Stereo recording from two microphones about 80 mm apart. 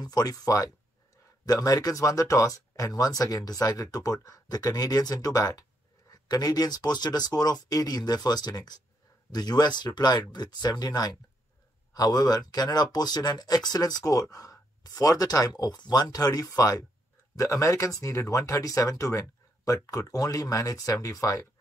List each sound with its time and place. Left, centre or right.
0.0 s speech: left